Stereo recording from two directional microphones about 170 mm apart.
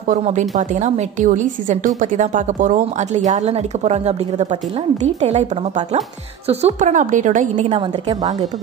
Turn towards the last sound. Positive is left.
turn(degrees=-45)  # may be behind; listen again after turning